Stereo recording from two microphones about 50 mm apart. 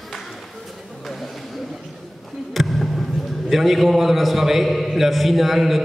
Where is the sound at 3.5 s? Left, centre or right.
Centre.